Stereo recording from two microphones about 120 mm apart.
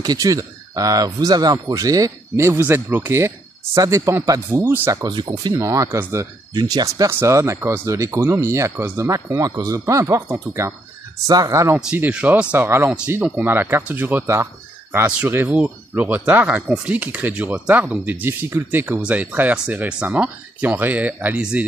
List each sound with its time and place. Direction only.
0.0 s speech: 30° right (ahead or behind); by 4.9 s 15° right (ahead or behind)
4.9 s speech: 40° right (ahead or behind)
6.5 s speech: 35° right (ahead or behind)
7.1 s speech: 20° right (ahead or behind)
11.2 s speech: 30° right (ahead or behind)
11.7 s speech: 10° right (ahead or behind)
12.9 s speech: 10° right (ahead or behind)